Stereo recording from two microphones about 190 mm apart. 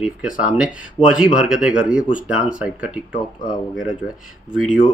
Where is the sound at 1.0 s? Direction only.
20° left (ahead or behind).